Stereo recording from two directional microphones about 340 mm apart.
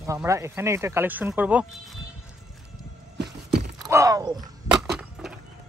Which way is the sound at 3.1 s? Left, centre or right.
Right.